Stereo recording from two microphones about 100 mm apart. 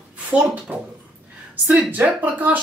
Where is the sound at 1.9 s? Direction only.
15° right (ahead or behind).